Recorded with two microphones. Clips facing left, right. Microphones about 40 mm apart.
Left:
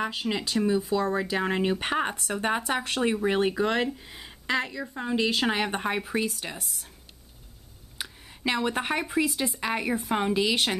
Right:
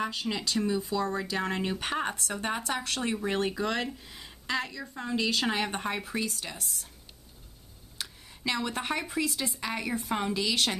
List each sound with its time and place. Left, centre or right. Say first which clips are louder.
0.0 s speech: left 3 dB; centre
8.0 s speech: left 4 dB; centre